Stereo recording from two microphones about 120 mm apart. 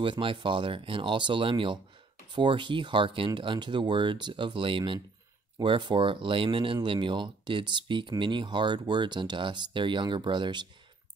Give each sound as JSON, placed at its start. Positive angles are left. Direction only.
{"t": 0.0, "sound": "speech", "side_deg": -45}